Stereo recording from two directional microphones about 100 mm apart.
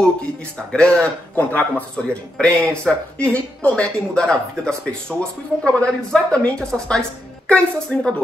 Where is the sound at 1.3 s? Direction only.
20° left (ahead or behind).